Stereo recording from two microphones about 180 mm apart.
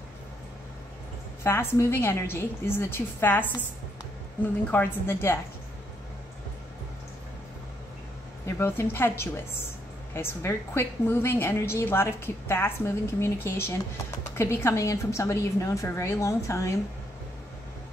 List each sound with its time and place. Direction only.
1.4 s a woman's voice: 15° left (ahead or behind)
4.6 s a woman's voice: 10° left (ahead or behind)
8.5 s a woman's voice: 15° left (ahead or behind)